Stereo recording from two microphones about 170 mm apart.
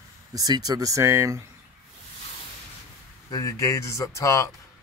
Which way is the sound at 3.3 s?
20° left (ahead or behind).